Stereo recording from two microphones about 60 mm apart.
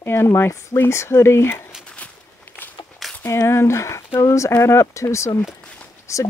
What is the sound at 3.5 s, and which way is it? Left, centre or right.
Speech, left.